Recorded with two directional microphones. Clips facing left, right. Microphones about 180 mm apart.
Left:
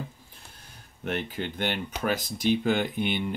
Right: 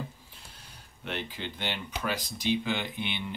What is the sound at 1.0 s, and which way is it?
Speech, 50° left (ahead or behind).